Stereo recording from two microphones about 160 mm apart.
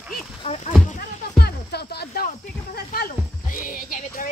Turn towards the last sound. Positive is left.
turn(degrees=60)  # may be behind; listen again after turning